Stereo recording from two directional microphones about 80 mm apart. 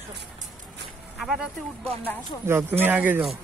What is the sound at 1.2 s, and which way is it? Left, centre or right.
Speech, centre.